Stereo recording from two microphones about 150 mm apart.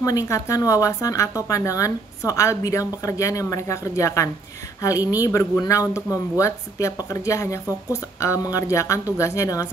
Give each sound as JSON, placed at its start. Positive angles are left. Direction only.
{"t": 0.0, "sound": "speech", "side_deg": 20}